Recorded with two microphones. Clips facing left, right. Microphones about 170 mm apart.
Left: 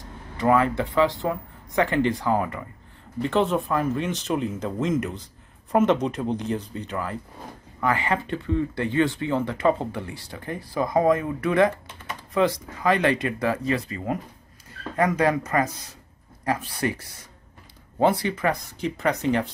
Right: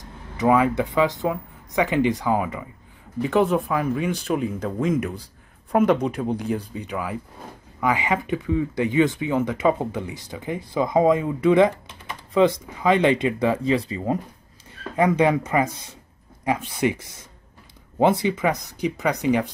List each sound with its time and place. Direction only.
0.4 s speech: 15° right (ahead or behind)
5.9 s speech: 10° right (ahead or behind)